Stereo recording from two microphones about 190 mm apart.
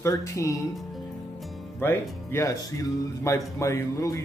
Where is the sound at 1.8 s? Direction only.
10° left (ahead or behind).